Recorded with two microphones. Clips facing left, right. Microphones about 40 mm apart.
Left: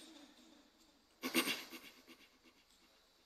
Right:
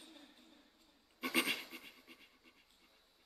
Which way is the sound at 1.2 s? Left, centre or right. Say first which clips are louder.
Right 2 dB; centre.